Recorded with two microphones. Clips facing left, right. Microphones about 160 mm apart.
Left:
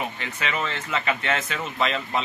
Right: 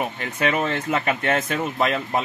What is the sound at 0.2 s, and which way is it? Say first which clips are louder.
Speech: right 6 dB; 50° right (ahead or behind).